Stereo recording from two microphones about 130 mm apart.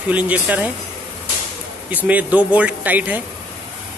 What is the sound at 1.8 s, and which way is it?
Speech, 10° right (ahead or behind).